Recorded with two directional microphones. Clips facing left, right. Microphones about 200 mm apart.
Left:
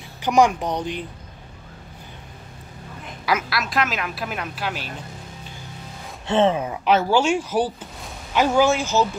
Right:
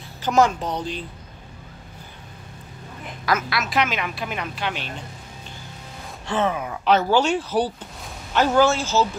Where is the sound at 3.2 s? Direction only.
10° left (ahead or behind).